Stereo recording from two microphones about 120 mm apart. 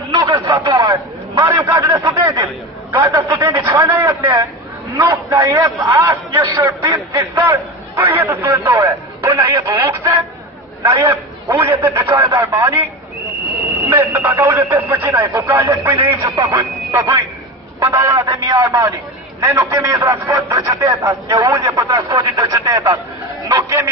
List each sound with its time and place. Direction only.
0.1 s a man's voice: 35° right (ahead or behind)
12.1 s speech: 40° right (ahead or behind)
12.4 s a man's voice: 20° right (ahead or behind)
13.8 s a man's voice: 20° right (ahead or behind)
18.3 s a man's voice: 35° right (ahead or behind)